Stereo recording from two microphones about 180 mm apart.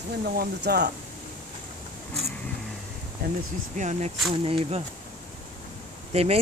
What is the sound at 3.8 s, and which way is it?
Speech, 40° right (ahead or behind).